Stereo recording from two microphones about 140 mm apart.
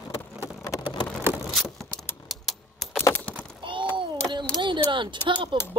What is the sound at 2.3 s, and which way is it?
Typewriter, centre (ahead or behind).